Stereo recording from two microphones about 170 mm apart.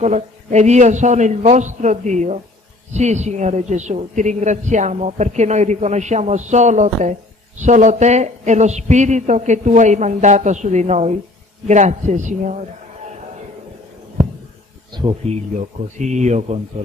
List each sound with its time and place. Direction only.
0.0 s a man's voice: 45° right (ahead or behind)
15.0 s speech: 30° right (ahead or behind)
16.0 s a man's voice: 45° right (ahead or behind)